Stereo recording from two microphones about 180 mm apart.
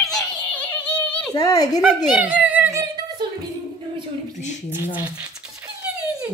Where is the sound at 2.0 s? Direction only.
10° right (ahead or behind).